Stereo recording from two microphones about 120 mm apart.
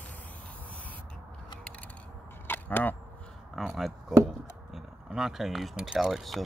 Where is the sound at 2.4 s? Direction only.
15° left (ahead or behind).